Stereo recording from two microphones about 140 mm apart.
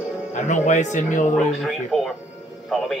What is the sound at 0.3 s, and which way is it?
Speech, 60° left (ahead or behind).